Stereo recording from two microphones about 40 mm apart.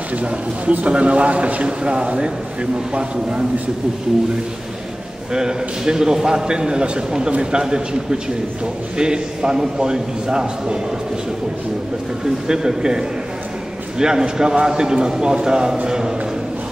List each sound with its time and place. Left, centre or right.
0.1 s a man's voice: right
5.3 s a man's voice: centre
12.4 s a man's voice: centre